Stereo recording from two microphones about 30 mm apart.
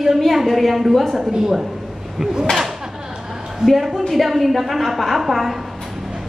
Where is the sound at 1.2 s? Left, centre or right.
Centre.